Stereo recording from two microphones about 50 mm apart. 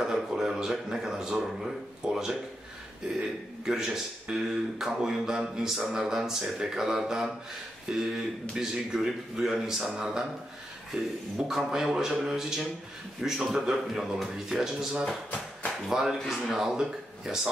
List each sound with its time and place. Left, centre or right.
0.0 s a man's voice: centre
3.6 s a man's voice: centre
10.9 s a sound: right
11.3 s a man's voice: centre